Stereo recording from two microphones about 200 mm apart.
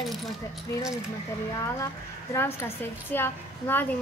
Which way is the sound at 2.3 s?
10° left (ahead or behind).